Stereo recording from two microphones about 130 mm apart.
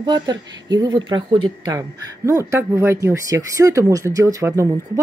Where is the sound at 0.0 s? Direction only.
35° right (ahead or behind).